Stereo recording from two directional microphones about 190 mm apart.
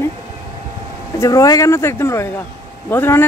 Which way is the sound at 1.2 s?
15° left (ahead or behind).